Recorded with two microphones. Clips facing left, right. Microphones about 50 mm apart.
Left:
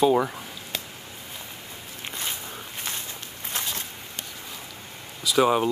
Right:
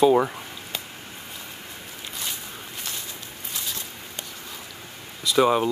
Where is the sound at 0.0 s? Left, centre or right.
Centre.